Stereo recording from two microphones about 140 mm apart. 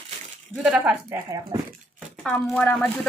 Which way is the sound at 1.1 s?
25° right (ahead or behind).